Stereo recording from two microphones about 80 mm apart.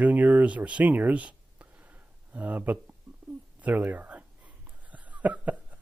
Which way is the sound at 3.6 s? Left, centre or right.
Centre.